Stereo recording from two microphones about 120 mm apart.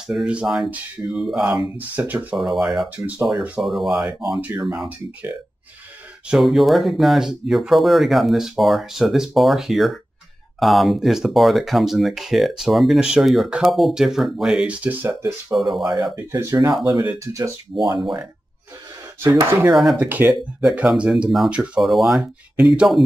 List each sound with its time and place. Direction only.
0.0 s speech: 5° right (ahead or behind)
2.3 s speech: centre (ahead or behind)
6.2 s speech: centre (ahead or behind); by 15.3 s 20° right (ahead or behind)
15.5 s speech: centre (ahead or behind)
15.8 s speech: 35° right (ahead or behind)
16.2 s speech: 20° right (ahead or behind)
17.9 s speech: 5° right (ahead or behind)
19.1 s speech: 20° right (ahead or behind)
19.7 s speech: centre (ahead or behind)
20.0 s speech: 15° right (ahead or behind)